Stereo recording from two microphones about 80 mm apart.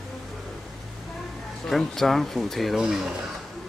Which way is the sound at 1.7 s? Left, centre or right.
Centre.